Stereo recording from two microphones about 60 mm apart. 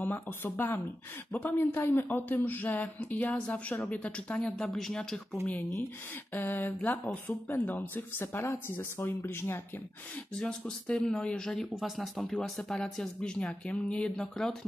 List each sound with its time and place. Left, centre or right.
0.0 s speech: left; by 5.0 s centre
5.1 s speech: centre
6.3 s speech: left
10.3 s speech: centre
11.7 s speech: centre